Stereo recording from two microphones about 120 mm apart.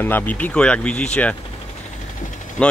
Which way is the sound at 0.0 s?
15° left (ahead or behind).